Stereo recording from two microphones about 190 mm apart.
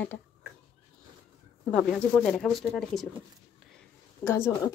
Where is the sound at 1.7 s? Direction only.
5° left (ahead or behind).